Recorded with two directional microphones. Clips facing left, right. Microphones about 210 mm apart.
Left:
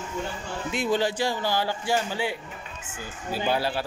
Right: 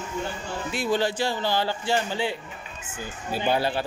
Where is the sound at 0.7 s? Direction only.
15° left (ahead or behind).